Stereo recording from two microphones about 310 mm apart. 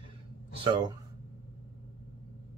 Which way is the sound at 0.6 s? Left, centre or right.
Centre.